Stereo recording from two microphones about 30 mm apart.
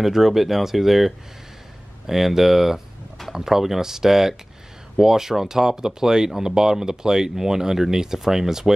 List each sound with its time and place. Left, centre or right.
0.0 s speech: centre